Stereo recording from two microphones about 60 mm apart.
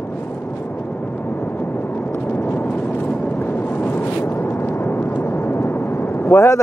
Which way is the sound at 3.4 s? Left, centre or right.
Left.